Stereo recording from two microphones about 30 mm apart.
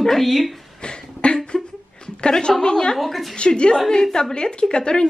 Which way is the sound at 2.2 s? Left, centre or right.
Left.